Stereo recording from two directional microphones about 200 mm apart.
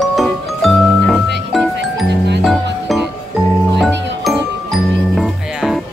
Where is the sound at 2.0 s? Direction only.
60° right (ahead or behind).